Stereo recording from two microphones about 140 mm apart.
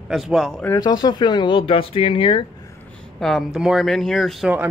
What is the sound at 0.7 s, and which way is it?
Speech, 30° left (ahead or behind).